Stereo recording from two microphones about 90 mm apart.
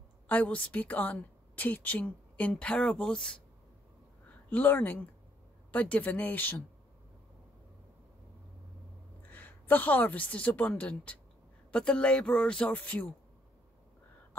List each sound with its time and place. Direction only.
0.3 s a woman's voice: 15° left (ahead or behind)
4.5 s a woman's voice: 20° left (ahead or behind)
9.2 s a woman's voice: 20° left (ahead or behind)